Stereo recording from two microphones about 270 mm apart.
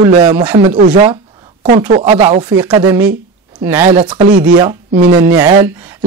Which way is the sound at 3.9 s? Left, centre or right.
Right.